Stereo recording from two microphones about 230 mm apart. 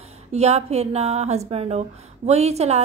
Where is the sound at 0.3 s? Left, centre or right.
Right.